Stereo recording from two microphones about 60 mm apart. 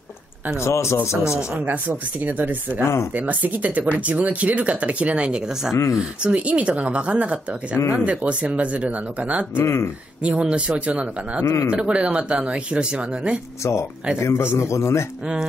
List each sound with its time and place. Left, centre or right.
0.6 s speech: left
1.1 s speech: centre
1.6 s speech: right
9.6 s speech: left
10.2 s speech: right
11.4 s speech: left
11.7 s speech: centre
14.2 s speech: left